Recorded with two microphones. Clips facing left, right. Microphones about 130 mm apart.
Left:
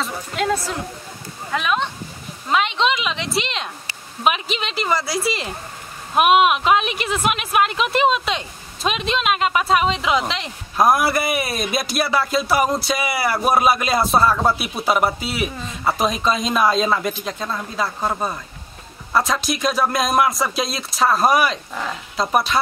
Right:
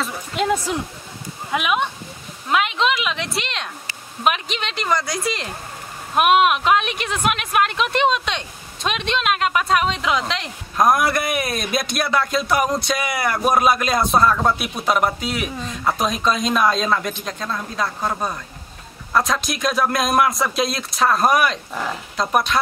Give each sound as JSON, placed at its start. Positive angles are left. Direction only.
{"t": 0.4, "sound": "speech", "side_deg": -15}
{"t": 2.4, "sound": "speech", "side_deg": -5}